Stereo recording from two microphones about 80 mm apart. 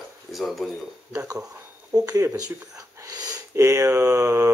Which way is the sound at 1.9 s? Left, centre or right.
Right.